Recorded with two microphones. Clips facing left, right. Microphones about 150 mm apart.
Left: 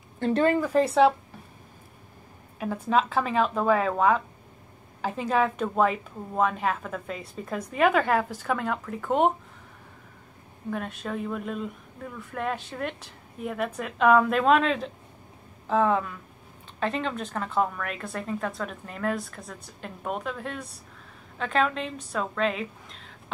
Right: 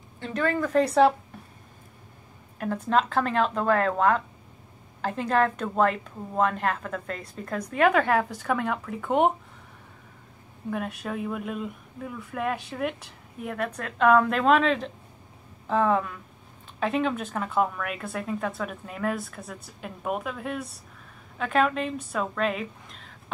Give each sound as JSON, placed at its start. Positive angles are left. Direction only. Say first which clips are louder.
{"t": 0.3, "sound": "a woman's voice", "louder": "left 5 dB", "side_deg": 25}
{"t": 0.6, "sound": "a woman's voice", "louder": "even", "side_deg": 5}
{"t": 2.6, "sound": "a woman's voice", "louder": "even", "side_deg": 5}
{"t": 10.7, "sound": "a woman's voice", "louder": "right 1 dB", "side_deg": -5}